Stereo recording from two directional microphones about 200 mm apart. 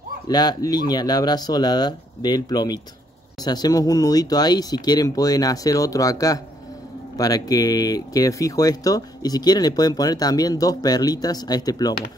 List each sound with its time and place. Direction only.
0.3 s speech: 20° left (ahead or behind)